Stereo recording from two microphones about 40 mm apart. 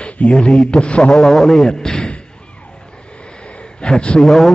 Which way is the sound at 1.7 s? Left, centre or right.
Centre.